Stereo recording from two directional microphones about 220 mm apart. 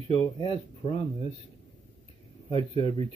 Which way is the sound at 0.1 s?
20° left (ahead or behind).